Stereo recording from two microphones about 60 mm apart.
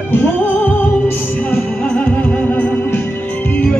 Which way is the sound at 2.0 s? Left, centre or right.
Left.